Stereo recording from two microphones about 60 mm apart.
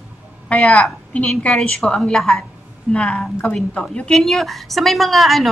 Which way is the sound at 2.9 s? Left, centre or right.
Centre.